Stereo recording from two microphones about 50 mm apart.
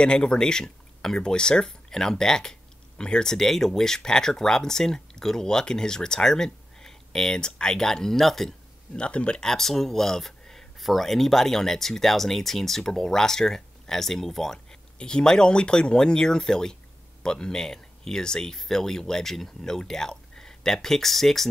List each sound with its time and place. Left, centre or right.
0.0 s speech: centre
8.9 s speech: left; by 21.5 s centre